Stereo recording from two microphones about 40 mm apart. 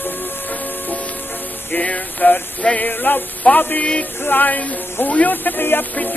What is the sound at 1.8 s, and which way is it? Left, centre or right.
Music, left.